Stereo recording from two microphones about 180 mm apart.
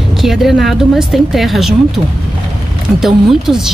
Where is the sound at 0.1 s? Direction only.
Centre (ahead or behind).